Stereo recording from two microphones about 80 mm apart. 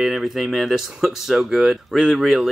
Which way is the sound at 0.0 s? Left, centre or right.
Centre.